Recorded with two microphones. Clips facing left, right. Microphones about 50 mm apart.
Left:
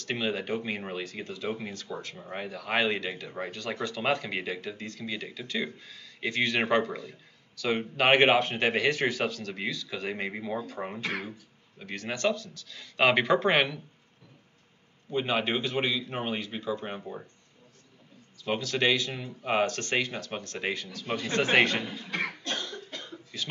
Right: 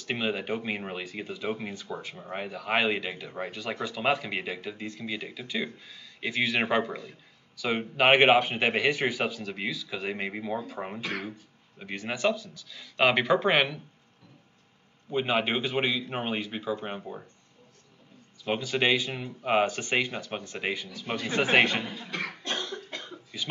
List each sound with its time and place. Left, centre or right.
0.0 s speech: centre
15.0 s speech: centre
18.4 s speech: centre
22.4 s cough: centre